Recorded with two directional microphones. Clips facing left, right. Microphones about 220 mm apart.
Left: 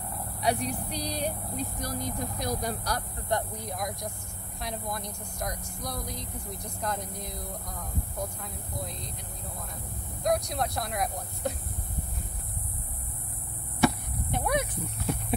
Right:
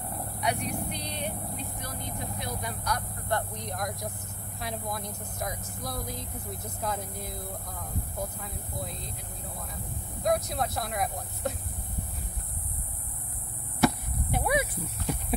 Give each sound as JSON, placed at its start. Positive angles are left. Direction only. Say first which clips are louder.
{"t": 0.4, "sound": "speech", "louder": "left 2 dB", "side_deg": 35}
{"t": 3.3, "sound": "speech", "louder": "left 1 dB", "side_deg": 15}
{"t": 3.6, "sound": "speech", "louder": "even", "side_deg": 0}
{"t": 10.2, "sound": "speech", "louder": "even", "side_deg": 0}
{"t": 13.7, "sound": "a sound", "louder": "even", "side_deg": -5}